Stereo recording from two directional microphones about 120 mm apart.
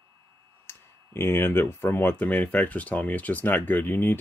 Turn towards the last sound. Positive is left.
turn(degrees=15)  # may be behind; listen again after turning